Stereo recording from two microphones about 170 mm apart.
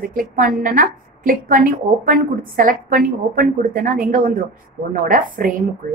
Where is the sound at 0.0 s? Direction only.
55° right (ahead or behind).